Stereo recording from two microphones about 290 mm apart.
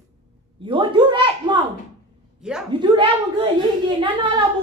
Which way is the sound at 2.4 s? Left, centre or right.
Centre.